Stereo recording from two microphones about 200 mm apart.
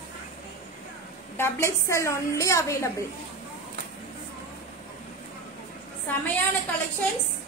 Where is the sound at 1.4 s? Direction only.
15° left (ahead or behind).